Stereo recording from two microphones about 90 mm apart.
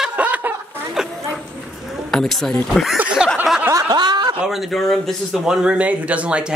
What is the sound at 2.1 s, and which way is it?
Speech, 5° left (ahead or behind).